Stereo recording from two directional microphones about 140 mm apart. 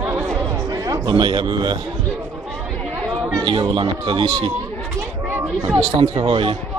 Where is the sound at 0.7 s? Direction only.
30° right (ahead or behind).